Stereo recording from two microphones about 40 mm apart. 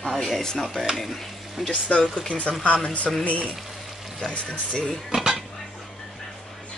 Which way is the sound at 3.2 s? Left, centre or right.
Left.